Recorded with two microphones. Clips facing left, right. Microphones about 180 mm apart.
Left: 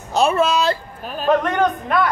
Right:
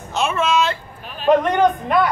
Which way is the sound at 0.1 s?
35° left (ahead or behind).